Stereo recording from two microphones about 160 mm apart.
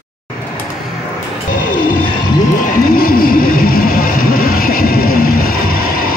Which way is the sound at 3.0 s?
65° left (ahead or behind).